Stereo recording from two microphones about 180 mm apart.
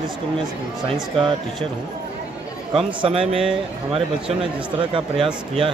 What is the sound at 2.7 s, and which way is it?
A man's voice, 30° right (ahead or behind).